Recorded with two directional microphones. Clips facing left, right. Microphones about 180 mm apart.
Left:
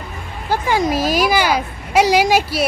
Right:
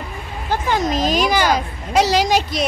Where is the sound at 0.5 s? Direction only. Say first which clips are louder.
Left 2 dB; 10° left (ahead or behind).